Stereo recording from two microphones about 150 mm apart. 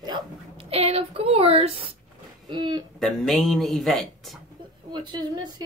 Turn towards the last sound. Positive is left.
turn(degrees=-30)  # may be behind; listen again after turning